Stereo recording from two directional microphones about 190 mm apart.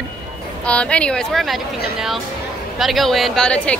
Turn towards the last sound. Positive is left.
turn(degrees=5)  # may be behind; listen again after turning